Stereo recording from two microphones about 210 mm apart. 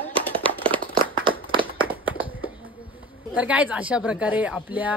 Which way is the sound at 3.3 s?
5° right (ahead or behind).